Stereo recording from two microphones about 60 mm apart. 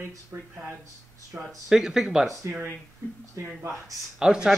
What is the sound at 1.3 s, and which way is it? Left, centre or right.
Speech, centre.